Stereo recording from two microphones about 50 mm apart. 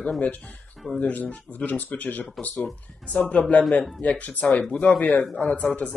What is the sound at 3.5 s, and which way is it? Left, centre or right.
Speech, centre.